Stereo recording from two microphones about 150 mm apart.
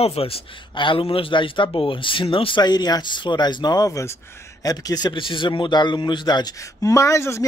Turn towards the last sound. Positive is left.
turn(degrees=20)  # may be behind; listen again after turning